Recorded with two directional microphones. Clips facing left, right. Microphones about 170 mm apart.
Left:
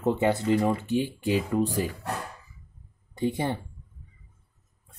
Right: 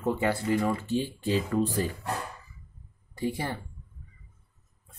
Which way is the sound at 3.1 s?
20° left (ahead or behind).